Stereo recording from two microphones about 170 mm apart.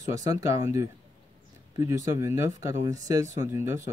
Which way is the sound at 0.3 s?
20° right (ahead or behind).